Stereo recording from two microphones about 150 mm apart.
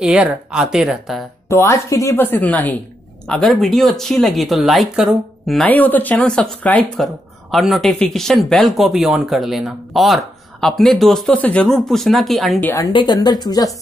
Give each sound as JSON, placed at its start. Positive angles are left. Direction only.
{"t": 0.0, "sound": "speech", "side_deg": -5}
{"t": 1.5, "sound": "speech", "side_deg": 20}
{"t": 5.7, "sound": "speech", "side_deg": 10}
{"t": 12.5, "sound": "speech", "side_deg": 15}
{"t": 12.9, "sound": "speech", "side_deg": 30}